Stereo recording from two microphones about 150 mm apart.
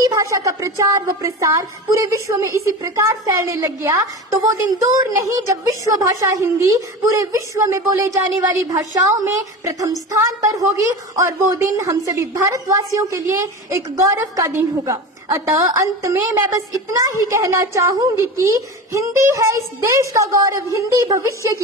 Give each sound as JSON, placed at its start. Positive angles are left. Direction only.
{"t": 0.1, "sound": "a woman's voice", "side_deg": -20}